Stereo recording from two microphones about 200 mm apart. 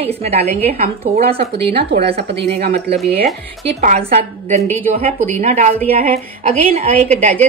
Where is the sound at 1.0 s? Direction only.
45° right (ahead or behind).